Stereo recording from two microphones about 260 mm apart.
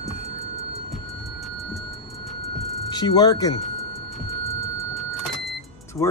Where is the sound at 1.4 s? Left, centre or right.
Centre.